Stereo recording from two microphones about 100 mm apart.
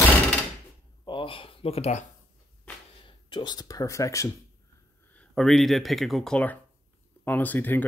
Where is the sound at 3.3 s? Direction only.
45° left (ahead or behind).